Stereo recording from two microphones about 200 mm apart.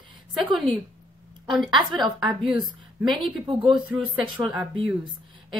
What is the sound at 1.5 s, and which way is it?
A woman's voice, centre (ahead or behind).